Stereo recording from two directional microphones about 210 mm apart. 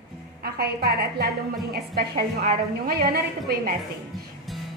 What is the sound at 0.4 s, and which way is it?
A woman's voice, 50° right (ahead or behind).